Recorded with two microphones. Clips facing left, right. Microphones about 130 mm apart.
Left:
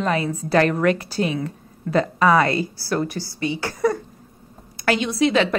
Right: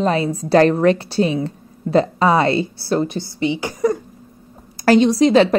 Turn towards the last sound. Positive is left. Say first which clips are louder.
# right 6 dB
turn(degrees=-35)  # may be behind; listen again after turning